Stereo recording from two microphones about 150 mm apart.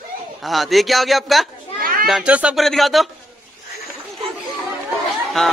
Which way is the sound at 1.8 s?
75° right (ahead or behind).